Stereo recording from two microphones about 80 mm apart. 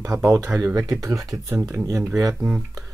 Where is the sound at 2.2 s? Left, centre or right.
Right.